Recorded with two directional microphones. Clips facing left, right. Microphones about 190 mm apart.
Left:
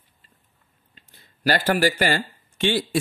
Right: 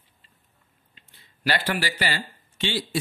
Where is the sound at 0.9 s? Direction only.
40° left (ahead or behind).